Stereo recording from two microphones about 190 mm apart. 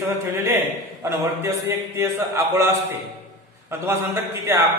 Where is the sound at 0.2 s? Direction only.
15° right (ahead or behind).